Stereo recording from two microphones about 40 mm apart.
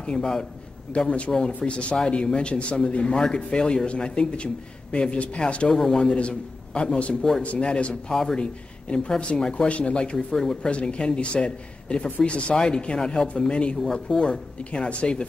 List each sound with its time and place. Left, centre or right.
0.0 s a man's voice: left
5.7 s speech: centre
6.1 s a man's voice: left
7.4 s speech: left
8.1 s speech: centre
8.4 s a man's voice: left
10.1 s speech: centre
10.7 s a man's voice: left